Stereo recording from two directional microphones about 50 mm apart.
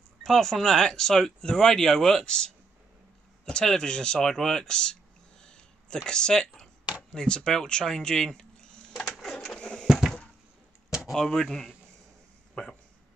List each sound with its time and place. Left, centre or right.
0.2 s speech: centre
5.4 s a sound: centre
6.0 s speech: centre
9.0 s printer: centre
9.8 s a sound: centre
11.1 s speech: centre